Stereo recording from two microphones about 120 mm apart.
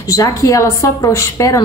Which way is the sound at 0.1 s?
30° left (ahead or behind).